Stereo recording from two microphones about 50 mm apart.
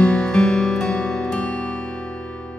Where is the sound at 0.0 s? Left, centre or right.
Centre.